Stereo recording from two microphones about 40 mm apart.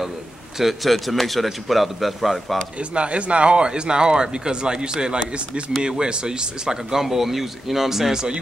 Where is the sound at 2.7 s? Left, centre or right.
Right.